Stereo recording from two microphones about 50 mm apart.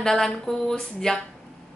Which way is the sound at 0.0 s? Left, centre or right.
Centre.